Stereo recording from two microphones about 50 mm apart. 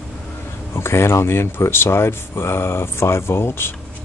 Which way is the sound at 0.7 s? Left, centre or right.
Left.